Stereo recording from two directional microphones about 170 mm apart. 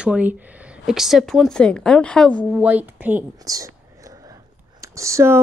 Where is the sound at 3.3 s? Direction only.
20° right (ahead or behind).